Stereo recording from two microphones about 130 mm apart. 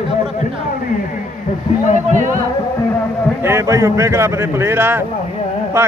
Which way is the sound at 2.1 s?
80° right.